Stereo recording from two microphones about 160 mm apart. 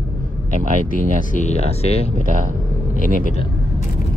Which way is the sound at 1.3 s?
45° left (ahead or behind).